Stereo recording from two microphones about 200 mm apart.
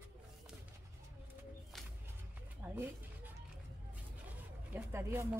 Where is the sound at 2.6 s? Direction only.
10° right (ahead or behind).